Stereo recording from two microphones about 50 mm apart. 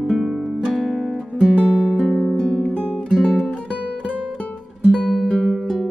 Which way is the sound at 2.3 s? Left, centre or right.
Centre.